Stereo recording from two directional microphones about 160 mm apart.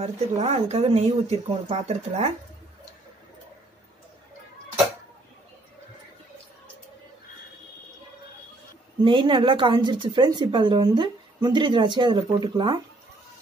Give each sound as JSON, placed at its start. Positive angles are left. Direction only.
{"t": 0.0, "sound": "speech", "side_deg": -40}
{"t": 9.0, "sound": "a woman's voice", "side_deg": -30}